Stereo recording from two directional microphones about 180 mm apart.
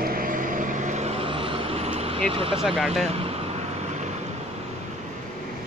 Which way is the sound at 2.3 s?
30° right (ahead or behind).